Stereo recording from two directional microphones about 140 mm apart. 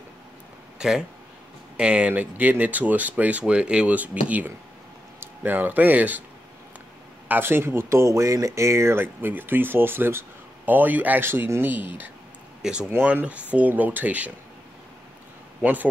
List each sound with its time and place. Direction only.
0.7 s speech: 5° right (ahead or behind)
7.2 s speech: 15° right (ahead or behind)
15.6 s speech: 10° right (ahead or behind)